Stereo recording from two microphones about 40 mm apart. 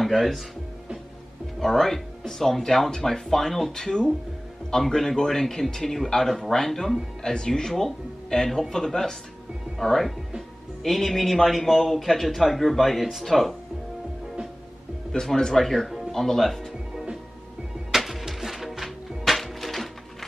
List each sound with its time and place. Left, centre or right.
0.0 s speech: centre
1.6 s a man's voice: centre
15.1 s a man's voice: centre
16.9 s music: centre